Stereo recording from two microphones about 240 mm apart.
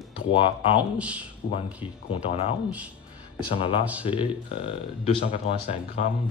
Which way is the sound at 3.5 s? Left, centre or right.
Left.